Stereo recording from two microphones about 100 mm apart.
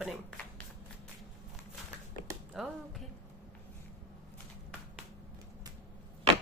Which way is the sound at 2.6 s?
5° right (ahead or behind).